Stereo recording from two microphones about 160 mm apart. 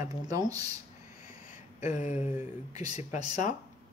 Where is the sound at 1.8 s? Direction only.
50° left (ahead or behind).